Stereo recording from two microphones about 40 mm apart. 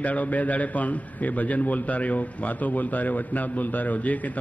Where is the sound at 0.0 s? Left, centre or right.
Left.